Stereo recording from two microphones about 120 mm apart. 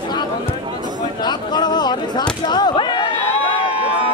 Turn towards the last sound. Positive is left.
turn(degrees=40)  # may be behind; listen again after turning